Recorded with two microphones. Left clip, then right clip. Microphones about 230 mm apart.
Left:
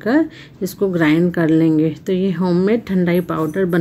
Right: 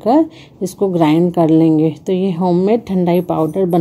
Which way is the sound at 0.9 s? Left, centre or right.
Centre.